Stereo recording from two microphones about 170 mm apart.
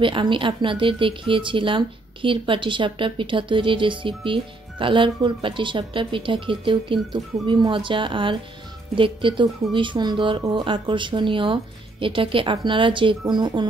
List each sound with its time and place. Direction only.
0.0 s speech: 30° right (ahead or behind)